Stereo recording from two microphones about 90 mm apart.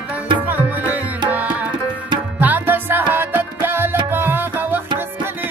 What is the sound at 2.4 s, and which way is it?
Music, 20° right (ahead or behind).